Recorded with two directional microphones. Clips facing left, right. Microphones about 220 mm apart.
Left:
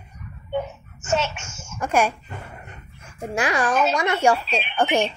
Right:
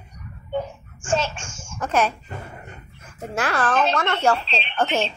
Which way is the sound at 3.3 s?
15° left (ahead or behind).